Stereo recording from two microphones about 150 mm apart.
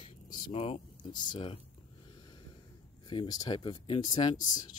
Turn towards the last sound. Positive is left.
turn(degrees=25)  # may be behind; listen again after turning